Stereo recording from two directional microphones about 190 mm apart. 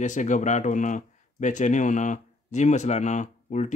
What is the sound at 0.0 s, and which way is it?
Speech, 40° left (ahead or behind).